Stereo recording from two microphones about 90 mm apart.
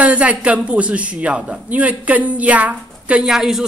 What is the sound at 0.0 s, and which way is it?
A man's voice, 15° right (ahead or behind).